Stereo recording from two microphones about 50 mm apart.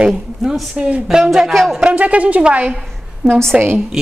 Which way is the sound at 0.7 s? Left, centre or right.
Right.